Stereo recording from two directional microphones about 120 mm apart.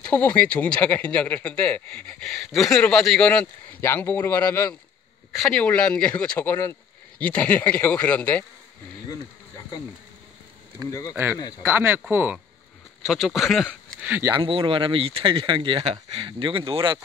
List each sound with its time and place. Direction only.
0.1 s speech: 10° left (ahead or behind)
3.8 s a man's voice: 20° left (ahead or behind)
5.3 s speech: 5° left (ahead or behind)
10.9 s a man's voice: 30° left (ahead or behind)
11.6 s speech: 20° right (ahead or behind)
13.0 s speech: centre (ahead or behind)
14.3 s speech: 45° right (ahead or behind)